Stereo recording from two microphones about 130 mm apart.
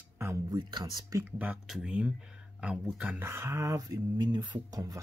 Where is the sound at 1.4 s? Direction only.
5° right (ahead or behind).